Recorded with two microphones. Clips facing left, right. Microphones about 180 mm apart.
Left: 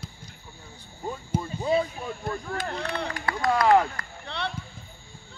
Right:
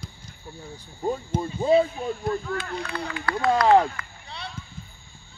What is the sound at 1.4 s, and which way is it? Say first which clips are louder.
Speech: right 6 dB; 30° right (ahead or behind).